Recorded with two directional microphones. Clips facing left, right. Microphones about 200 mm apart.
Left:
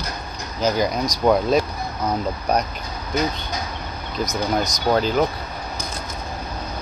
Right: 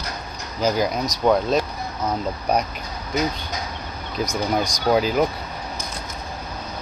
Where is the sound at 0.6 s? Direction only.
5° right (ahead or behind).